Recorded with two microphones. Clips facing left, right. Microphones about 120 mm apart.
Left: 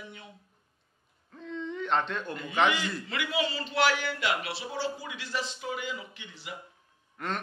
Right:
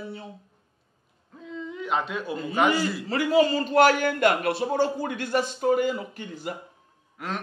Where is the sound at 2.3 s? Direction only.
35° right (ahead or behind).